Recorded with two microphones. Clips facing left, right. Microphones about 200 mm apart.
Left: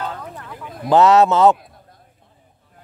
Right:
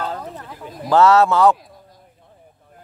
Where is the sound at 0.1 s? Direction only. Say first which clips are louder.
Right 2 dB; 30° right (ahead or behind).